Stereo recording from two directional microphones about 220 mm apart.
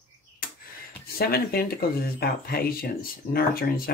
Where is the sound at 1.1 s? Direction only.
45° left (ahead or behind).